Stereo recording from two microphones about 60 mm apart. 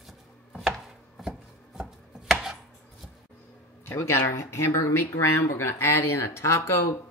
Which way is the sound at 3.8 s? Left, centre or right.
Left.